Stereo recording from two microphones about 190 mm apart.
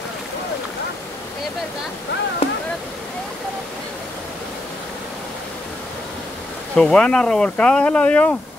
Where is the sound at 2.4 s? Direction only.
30° left (ahead or behind).